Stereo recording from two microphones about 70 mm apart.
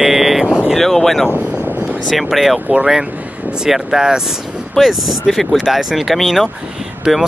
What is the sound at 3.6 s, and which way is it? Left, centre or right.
Speech, centre.